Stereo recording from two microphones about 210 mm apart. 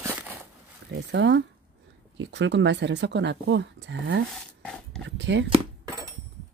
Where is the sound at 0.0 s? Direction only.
10° right (ahead or behind).